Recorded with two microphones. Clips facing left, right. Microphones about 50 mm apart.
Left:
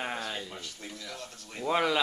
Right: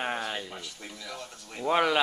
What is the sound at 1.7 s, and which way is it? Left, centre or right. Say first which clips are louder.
Speech: right 3 dB; right.